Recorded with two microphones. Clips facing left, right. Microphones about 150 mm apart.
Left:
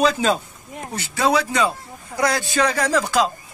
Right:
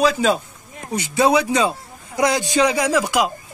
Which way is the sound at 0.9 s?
20° right (ahead or behind).